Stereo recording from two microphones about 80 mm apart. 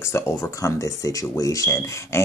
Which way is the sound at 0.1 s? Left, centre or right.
Left.